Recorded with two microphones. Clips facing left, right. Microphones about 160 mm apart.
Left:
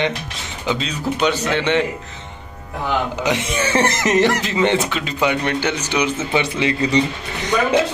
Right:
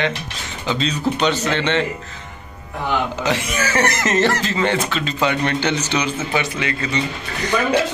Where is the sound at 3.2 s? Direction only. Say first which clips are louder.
Left 1 dB; 20° left (ahead or behind).